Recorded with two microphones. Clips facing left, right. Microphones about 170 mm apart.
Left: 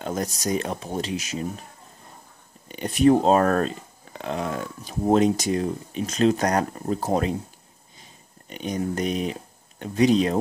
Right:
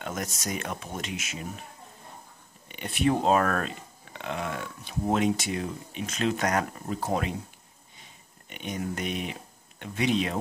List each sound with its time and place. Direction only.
0.0 s speech: 35° left (ahead or behind)
2.7 s speech: 40° left (ahead or behind)
8.5 s speech: 35° left (ahead or behind)